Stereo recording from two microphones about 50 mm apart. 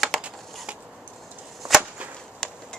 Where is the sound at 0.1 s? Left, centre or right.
Centre.